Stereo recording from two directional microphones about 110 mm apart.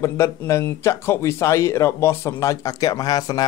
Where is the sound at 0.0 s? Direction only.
25° left (ahead or behind).